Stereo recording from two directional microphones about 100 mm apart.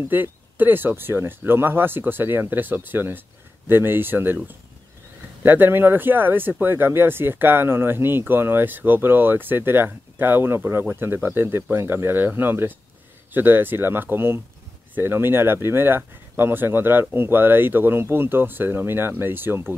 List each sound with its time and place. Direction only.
0.0 s speech: 20° right (ahead or behind)